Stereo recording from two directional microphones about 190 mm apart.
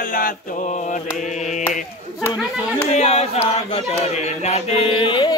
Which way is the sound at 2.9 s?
35° left (ahead or behind).